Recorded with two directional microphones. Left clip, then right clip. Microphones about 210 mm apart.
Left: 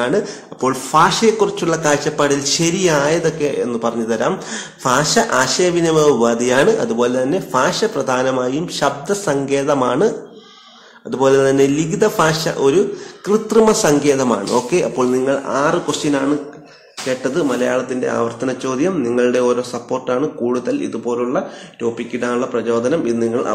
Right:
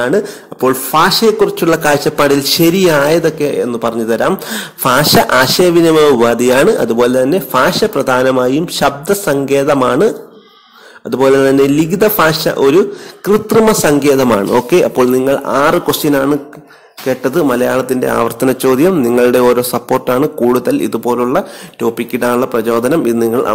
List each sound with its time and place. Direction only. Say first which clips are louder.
0.0 s speech: right 4 dB; 30° right (ahead or behind); by 23.5 s 50° right (ahead or behind)